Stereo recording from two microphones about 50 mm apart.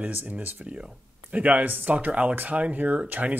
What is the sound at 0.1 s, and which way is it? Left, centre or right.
Speech, right.